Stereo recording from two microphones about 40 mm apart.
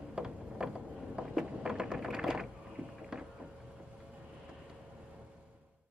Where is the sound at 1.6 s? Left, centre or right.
Centre.